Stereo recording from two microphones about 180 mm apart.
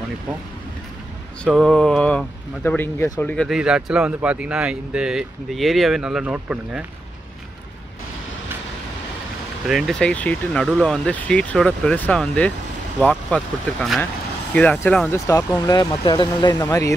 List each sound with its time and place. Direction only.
1.5 s speech: centre (ahead or behind)
9.7 s speech: centre (ahead or behind); by 16.9 s 20° left (ahead or behind)